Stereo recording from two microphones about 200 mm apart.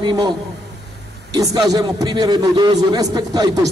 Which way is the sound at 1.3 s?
20° right (ahead or behind).